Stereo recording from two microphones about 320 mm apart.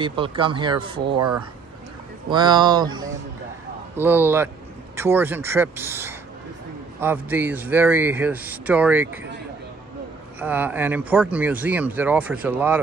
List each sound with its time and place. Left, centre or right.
0.0 s speech: centre
10.4 s speech: centre